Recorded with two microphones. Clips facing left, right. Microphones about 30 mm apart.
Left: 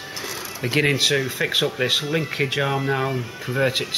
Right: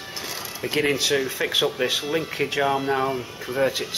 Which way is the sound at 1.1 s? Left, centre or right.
Centre.